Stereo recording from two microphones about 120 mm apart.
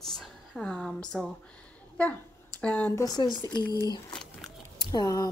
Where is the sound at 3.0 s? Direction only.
35° left (ahead or behind).